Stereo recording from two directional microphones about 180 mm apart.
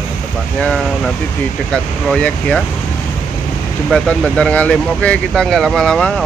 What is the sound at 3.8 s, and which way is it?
Speech, centre (ahead or behind).